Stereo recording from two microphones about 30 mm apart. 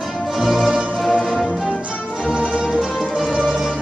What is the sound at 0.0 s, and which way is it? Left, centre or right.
Music, centre.